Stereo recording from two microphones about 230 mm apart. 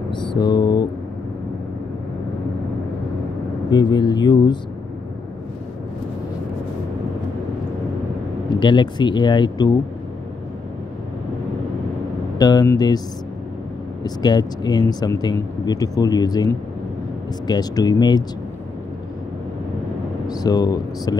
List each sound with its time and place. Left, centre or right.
0.1 s mantra: centre
3.7 s speech: centre
8.5 s speech: centre
12.4 s speech: centre
14.0 s speech: centre
20.2 s speech: centre